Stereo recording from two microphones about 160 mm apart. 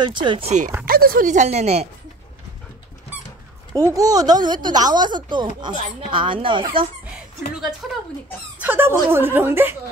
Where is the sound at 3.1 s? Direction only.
10° right (ahead or behind).